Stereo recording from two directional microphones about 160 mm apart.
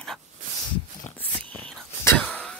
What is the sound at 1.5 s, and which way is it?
Whispering, 10° left (ahead or behind).